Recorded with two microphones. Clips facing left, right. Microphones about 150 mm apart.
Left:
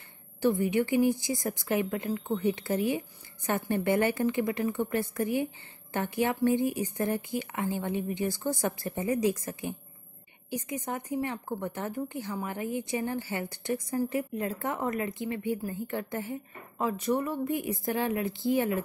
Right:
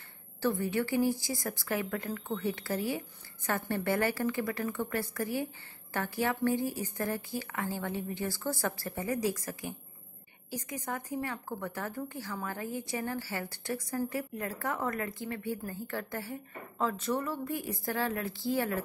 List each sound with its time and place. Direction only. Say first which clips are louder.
0.4 s a woman's voice: left 5 dB; 20° left (ahead or behind)